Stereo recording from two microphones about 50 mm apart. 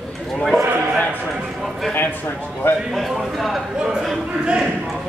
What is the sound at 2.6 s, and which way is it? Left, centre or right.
Speech, left.